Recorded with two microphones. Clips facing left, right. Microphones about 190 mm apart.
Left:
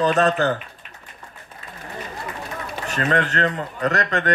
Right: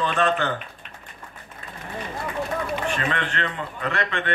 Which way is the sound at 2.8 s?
40° left (ahead or behind).